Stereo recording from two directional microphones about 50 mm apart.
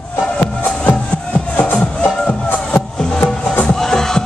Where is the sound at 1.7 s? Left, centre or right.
Left.